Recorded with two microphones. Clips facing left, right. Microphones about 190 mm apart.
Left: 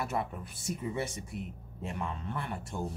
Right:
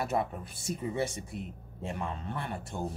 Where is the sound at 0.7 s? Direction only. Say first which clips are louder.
Right 2 dB; 30° right (ahead or behind).